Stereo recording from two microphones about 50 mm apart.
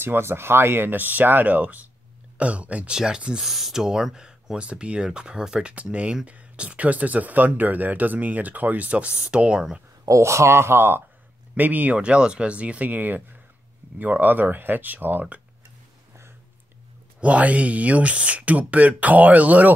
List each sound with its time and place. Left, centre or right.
0.0 s speech: right
2.9 s speech: centre
3.4 s speech: centre
10.1 s speech: right
11.5 s speech: right
17.2 s speech: right